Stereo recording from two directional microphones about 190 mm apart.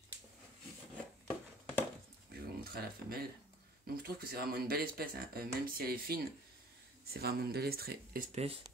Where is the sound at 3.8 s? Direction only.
50° right (ahead or behind).